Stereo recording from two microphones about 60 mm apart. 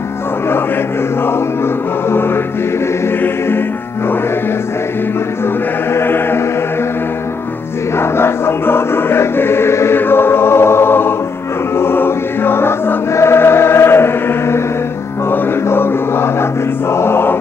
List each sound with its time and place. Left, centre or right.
2.0 s music: left
5.9 s chant: left
8.0 s music: left
16.9 s choir: left